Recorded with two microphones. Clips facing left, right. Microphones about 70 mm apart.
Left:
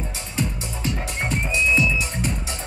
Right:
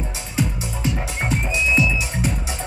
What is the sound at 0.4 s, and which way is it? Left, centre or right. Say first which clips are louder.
Music: right 3 dB; centre.